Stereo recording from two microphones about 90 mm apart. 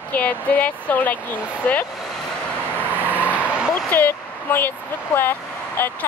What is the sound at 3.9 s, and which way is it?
Speech, 20° left (ahead or behind).